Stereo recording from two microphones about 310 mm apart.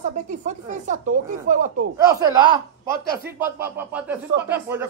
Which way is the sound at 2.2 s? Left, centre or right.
Centre.